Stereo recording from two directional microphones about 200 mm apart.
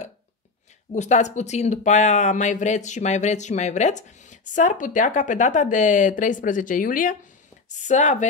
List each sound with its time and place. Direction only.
0.9 s speech: 35° left (ahead or behind)